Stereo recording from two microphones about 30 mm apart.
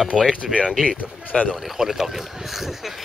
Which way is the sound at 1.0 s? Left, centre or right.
Left.